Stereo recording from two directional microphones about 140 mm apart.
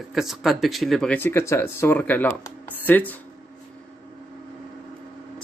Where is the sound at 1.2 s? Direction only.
15° left (ahead or behind).